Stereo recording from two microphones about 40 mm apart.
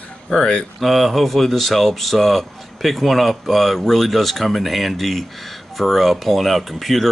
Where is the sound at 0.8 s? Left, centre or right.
Centre.